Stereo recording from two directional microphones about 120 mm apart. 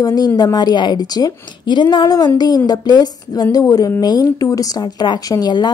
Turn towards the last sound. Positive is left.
turn(degrees=35)  # may be behind; listen again after turning